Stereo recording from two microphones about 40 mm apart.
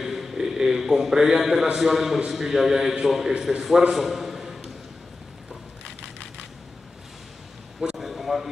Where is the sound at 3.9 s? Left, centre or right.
Centre.